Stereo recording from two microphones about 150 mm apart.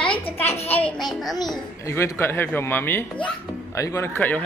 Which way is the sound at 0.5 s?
10° left (ahead or behind).